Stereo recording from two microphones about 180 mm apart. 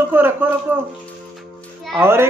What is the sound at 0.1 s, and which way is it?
Speech, 10° right (ahead or behind).